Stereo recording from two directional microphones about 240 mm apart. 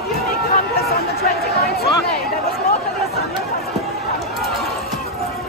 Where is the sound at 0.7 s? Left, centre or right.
Left.